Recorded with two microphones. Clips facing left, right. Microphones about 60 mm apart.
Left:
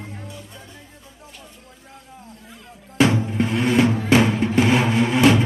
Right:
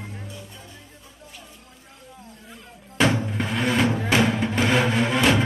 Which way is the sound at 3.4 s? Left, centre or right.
Centre.